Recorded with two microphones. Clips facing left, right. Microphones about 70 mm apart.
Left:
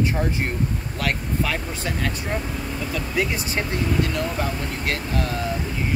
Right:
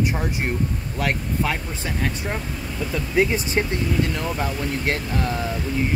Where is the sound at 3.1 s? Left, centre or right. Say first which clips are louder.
Right 6 dB; right.